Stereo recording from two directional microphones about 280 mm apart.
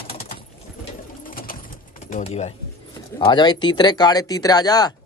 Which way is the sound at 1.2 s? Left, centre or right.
Left.